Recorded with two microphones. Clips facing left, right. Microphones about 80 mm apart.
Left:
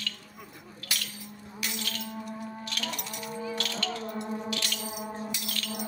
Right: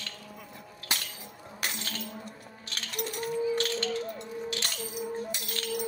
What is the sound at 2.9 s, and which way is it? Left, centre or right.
Music, right.